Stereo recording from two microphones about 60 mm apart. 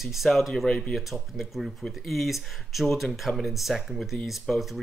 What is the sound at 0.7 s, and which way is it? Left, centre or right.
Speech, centre.